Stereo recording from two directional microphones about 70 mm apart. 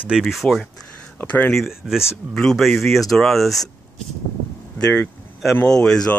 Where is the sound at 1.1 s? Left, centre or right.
Left.